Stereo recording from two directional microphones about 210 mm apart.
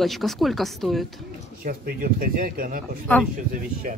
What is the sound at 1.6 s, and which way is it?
A man's voice, 45° right (ahead or behind).